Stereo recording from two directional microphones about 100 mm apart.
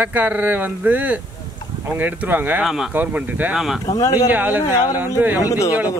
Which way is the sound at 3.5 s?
Centre (ahead or behind).